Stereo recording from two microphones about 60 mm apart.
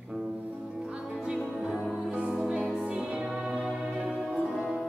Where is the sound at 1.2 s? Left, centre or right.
Centre.